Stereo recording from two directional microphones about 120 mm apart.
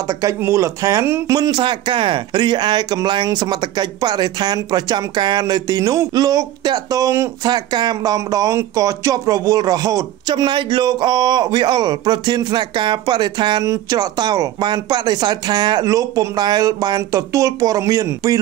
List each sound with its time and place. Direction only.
0.1 s speech: 30° right (ahead or behind)
1.3 s speech: 35° right (ahead or behind)